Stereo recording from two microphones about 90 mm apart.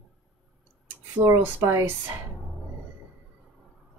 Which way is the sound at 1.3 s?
25° right (ahead or behind).